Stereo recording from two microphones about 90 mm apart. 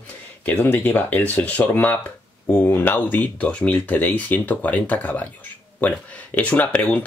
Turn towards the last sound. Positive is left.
turn(degrees=20)  # may be behind; listen again after turning